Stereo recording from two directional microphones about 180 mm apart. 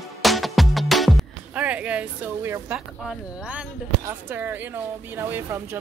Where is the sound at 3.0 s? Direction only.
5° right (ahead or behind).